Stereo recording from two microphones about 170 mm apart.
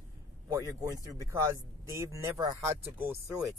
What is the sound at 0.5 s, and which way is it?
Speech, 20° right (ahead or behind).